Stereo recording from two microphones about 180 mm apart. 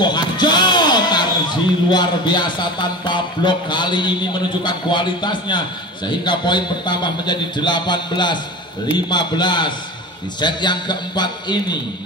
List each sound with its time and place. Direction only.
0.0 s a man's voice: 25° left (ahead or behind)